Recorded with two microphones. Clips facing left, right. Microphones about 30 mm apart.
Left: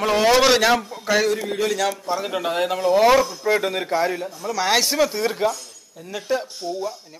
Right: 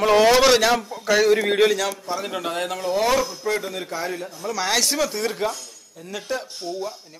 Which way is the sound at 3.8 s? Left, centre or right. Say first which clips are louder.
Left 6 dB; left.